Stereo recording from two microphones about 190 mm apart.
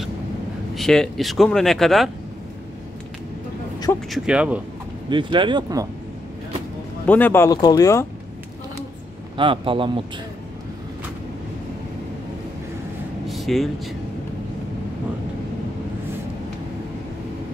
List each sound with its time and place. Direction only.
0.7 s speech: centre (ahead or behind)
4.1 s speech: 5° right (ahead or behind)
5.1 s speech: 25° right (ahead or behind)
7.1 s speech: 10° left (ahead or behind)
9.4 s speech: 25° right (ahead or behind)
13.3 s a sound: centre (ahead or behind)